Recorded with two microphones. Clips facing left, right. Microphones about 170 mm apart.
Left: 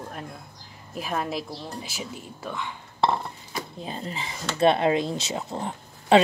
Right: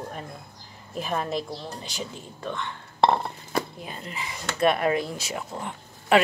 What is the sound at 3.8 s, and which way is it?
Speech, 30° left (ahead or behind).